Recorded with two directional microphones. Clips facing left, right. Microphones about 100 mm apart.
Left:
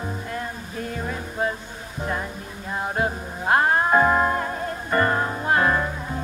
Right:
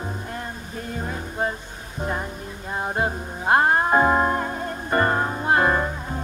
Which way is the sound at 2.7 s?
10° right (ahead or behind).